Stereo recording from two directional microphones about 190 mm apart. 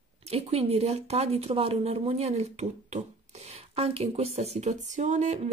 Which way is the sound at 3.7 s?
30° right (ahead or behind).